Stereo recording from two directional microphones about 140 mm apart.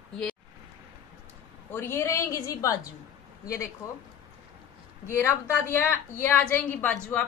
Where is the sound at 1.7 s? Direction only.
15° left (ahead or behind).